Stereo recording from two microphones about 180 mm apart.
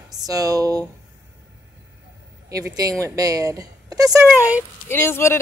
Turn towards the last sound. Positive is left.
turn(degrees=15)  # may be behind; listen again after turning